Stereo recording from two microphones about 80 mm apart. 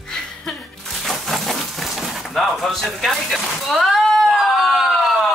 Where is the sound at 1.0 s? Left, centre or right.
Centre.